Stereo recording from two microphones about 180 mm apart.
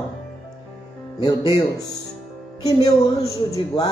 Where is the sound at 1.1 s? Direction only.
25° left (ahead or behind).